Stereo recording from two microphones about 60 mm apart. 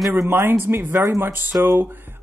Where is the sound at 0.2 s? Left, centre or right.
Right.